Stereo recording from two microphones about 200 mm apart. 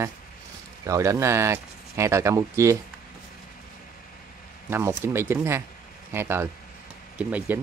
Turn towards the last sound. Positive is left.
turn(degrees=-10)  # may be behind; listen again after turning